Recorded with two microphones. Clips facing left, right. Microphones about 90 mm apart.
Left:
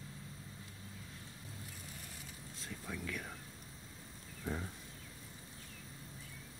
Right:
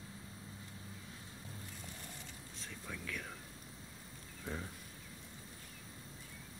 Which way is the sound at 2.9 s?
5° left (ahead or behind).